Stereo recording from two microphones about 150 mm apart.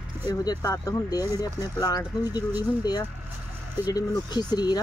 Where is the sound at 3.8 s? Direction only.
25° left (ahead or behind).